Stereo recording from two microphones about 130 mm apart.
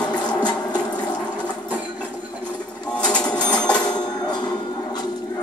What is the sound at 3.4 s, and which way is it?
Music, 10° left (ahead or behind).